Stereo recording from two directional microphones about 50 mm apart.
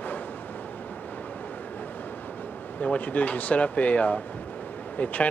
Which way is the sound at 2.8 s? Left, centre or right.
Left.